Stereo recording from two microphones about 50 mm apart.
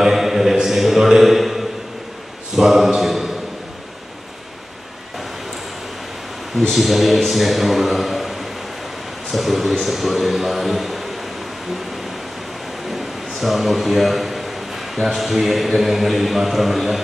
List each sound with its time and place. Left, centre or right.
0.0 s music: centre
2.5 s a sound: centre
6.7 s a man's voice: centre
12.9 s a man's voice: centre